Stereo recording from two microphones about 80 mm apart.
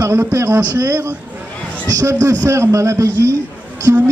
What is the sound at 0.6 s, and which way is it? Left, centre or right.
A man's voice, right.